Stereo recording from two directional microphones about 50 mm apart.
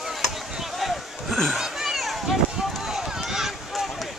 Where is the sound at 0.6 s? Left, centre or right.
Centre.